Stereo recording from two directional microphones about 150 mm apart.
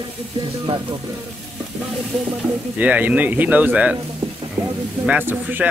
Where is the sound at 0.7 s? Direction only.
40° right (ahead or behind).